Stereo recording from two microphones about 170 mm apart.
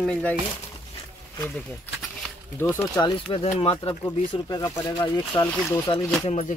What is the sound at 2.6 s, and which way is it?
Speech, 15° left (ahead or behind).